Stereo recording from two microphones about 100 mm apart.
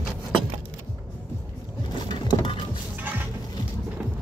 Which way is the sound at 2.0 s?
55° left (ahead or behind).